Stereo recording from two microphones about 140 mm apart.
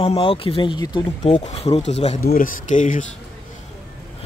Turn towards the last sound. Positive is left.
turn(degrees=60)  # may be behind; listen again after turning